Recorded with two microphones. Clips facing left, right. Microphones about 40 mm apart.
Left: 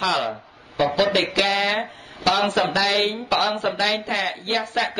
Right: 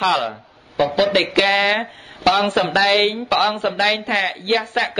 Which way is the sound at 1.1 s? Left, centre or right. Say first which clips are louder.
Right 4 dB; right.